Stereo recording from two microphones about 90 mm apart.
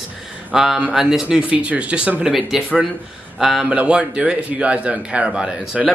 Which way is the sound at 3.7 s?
15° right (ahead or behind).